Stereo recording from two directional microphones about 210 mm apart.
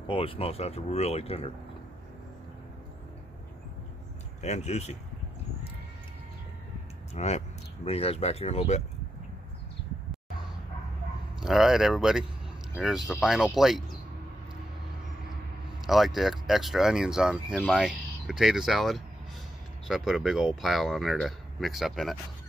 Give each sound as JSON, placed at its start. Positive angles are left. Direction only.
{"t": 0.1, "sound": "speech", "side_deg": 25}
{"t": 4.4, "sound": "speech", "side_deg": 30}
{"t": 7.2, "sound": "speech", "side_deg": 30}
{"t": 11.4, "sound": "speech", "side_deg": 0}
{"t": 15.8, "sound": "speech", "side_deg": 0}